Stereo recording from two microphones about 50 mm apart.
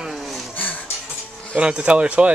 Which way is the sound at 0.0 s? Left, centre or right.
Centre.